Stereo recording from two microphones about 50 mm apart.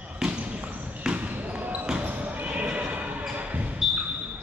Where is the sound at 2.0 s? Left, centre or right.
Right.